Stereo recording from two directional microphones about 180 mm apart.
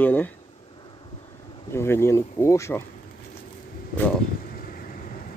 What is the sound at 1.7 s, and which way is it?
Speech, 15° left (ahead or behind).